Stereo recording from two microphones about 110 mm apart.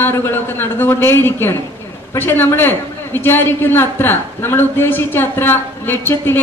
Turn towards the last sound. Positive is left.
turn(degrees=20)  # may be behind; listen again after turning